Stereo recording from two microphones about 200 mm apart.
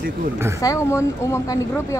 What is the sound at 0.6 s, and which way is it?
A woman's voice, 15° left (ahead or behind).